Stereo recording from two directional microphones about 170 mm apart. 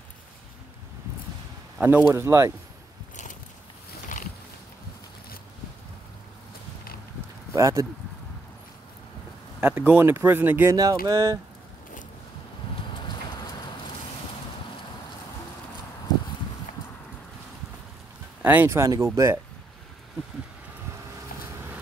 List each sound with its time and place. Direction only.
1.8 s speech: 10° right (ahead or behind)
7.5 s speech: 20° right (ahead or behind)
9.6 s speech: 10° right (ahead or behind)
18.4 s speech: 10° right (ahead or behind)